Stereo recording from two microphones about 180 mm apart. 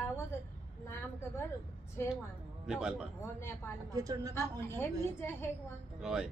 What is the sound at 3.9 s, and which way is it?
Speech, 20° right (ahead or behind).